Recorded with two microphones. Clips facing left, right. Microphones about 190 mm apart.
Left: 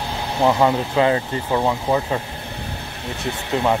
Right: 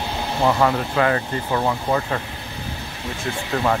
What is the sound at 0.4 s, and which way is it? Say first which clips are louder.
Speech: left 2 dB; 15° left (ahead or behind).